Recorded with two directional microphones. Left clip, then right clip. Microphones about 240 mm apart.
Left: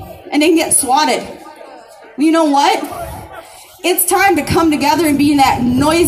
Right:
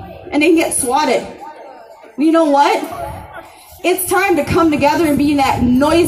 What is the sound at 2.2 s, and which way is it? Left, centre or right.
Speech, left.